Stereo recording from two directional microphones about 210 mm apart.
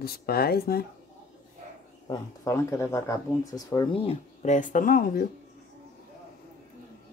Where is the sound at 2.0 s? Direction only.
15° left (ahead or behind); by 5.2 s 45° left (ahead or behind).